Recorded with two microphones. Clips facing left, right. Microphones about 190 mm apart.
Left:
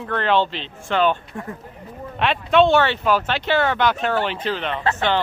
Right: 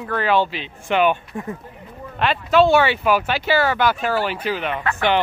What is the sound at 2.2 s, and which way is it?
Speech, centre (ahead or behind).